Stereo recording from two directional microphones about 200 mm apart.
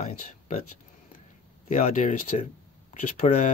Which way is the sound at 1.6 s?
35° left (ahead or behind).